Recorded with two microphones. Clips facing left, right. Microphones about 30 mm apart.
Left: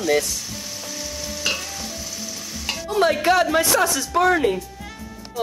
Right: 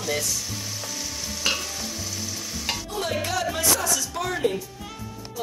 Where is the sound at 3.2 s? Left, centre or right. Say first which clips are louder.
Left 8 dB; left.